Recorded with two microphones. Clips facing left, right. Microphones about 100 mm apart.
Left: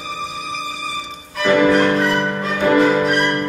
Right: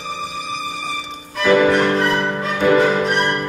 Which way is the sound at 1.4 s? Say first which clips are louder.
Even; centre (ahead or behind).